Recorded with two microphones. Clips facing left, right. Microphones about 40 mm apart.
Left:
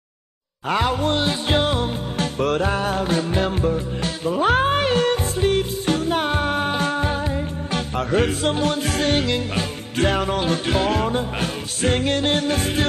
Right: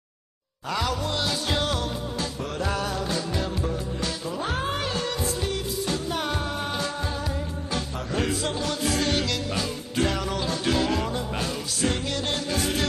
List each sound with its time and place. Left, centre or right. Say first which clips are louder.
0.7 s music: left 7 dB; left
2.1 s music: left 9 dB; left
2.7 s music: left 6 dB; left
7.7 s music: left 8 dB; left